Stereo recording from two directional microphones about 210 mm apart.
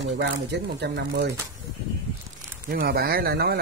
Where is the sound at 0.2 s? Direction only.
55° right (ahead or behind).